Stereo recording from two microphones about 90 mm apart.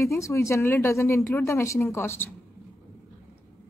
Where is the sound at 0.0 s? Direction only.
35° left (ahead or behind).